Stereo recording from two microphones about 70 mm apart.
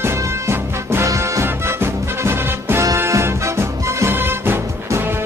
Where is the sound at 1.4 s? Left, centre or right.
Right.